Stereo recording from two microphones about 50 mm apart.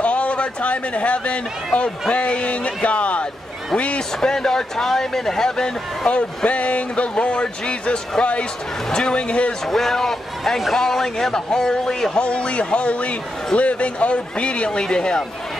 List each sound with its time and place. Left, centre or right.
0.0 s speech: left
4.2 s speech: centre
6.0 s speech: left
9.7 s speech: centre